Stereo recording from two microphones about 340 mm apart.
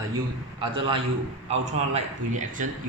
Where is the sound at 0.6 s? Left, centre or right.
Centre.